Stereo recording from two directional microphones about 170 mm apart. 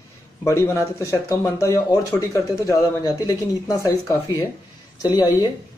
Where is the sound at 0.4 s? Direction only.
15° left (ahead or behind).